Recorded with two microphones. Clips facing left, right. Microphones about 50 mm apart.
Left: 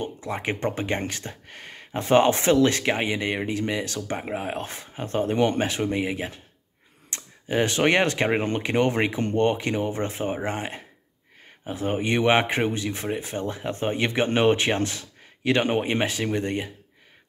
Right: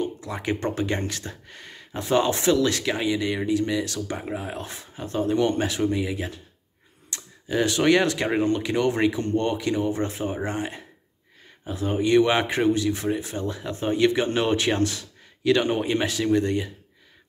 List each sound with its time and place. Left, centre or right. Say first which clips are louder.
0.0 s speech: even; left